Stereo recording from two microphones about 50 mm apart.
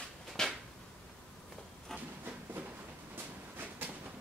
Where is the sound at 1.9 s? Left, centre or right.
Centre.